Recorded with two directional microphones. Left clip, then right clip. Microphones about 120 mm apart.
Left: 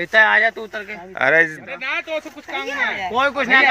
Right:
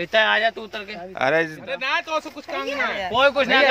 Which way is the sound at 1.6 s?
30° right (ahead or behind).